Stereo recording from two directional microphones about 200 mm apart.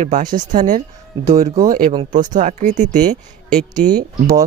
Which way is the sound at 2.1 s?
40° right (ahead or behind).